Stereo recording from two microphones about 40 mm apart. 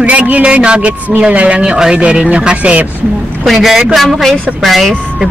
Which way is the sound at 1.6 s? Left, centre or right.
Right.